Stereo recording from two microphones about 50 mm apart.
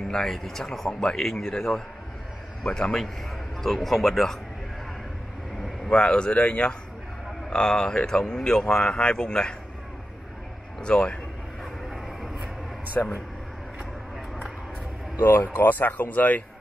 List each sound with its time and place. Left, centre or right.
0.1 s speech: centre
3.6 s speech: centre
5.9 s speech: centre
10.8 s speech: centre
12.9 s speech: left
15.5 s speech: left